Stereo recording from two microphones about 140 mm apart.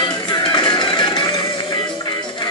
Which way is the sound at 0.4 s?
30° left (ahead or behind).